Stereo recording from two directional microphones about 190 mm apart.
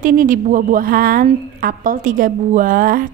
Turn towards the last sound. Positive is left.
turn(degrees=-45)  # may be behind; listen again after turning